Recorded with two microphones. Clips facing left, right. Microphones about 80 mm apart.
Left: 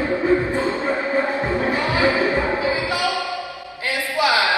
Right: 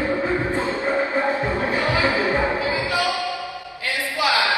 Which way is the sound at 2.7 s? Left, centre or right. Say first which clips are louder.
Left 1 dB; left.